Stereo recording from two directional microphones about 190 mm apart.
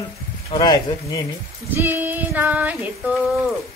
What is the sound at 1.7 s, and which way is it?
Female singing, 10° right (ahead or behind).